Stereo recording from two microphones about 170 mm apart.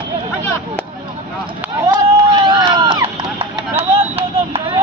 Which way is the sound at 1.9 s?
25° right (ahead or behind).